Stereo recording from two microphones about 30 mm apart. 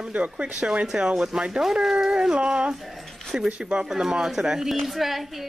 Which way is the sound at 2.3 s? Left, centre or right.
Right.